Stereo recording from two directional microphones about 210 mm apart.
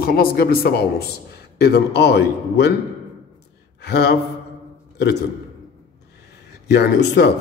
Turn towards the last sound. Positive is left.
turn(degrees=55)  # may be behind; listen again after turning